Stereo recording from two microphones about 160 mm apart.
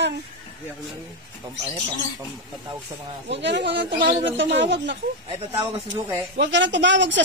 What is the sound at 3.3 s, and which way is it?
A man's voice, 90° right.